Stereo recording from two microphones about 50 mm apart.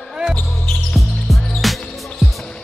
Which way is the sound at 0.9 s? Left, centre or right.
Centre.